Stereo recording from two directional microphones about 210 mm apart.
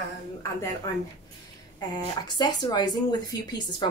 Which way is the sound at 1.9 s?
20° left (ahead or behind).